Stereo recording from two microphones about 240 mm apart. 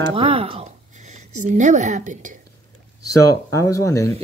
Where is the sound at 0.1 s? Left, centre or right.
Right.